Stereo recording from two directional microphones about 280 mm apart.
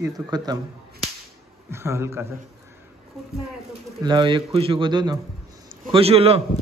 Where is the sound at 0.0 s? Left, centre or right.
Centre.